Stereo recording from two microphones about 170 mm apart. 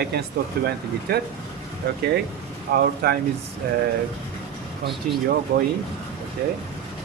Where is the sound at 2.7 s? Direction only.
70° right (ahead or behind).